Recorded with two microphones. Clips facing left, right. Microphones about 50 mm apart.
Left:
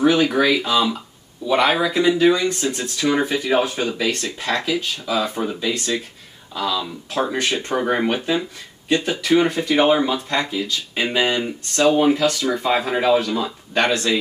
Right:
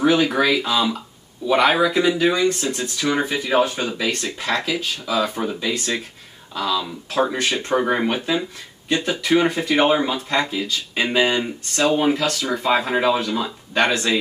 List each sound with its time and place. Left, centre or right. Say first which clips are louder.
0.0 s speech: left 1 dB; centre
9.2 s speech: even; centre
13.8 s speech: left 2 dB; centre